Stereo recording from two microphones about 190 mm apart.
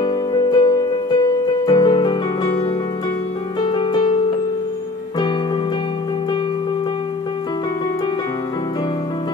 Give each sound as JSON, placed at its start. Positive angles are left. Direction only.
{"t": 0.0, "sound": "music", "side_deg": 20}
{"t": 3.6, "sound": "music", "side_deg": 25}